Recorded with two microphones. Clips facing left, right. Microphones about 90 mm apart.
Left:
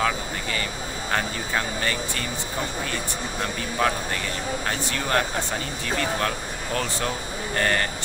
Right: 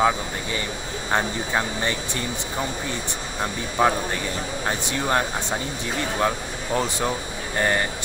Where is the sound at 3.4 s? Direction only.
20° right (ahead or behind).